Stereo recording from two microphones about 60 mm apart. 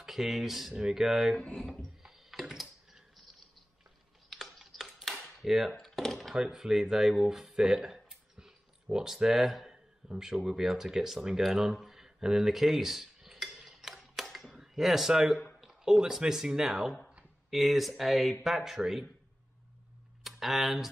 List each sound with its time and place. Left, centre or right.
0.0 s speech: centre
1.4 s speech: left
2.0 s a sound: centre
4.3 s typing: centre
5.2 s a sound: centre
6.3 s speech: centre
13.5 s tick-tock: centre
14.2 s a sound: centre
15.6 s speech: centre
20.2 s speech: centre